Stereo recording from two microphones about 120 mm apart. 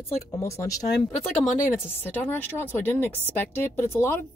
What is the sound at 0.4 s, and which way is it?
Speech, 25° left (ahead or behind).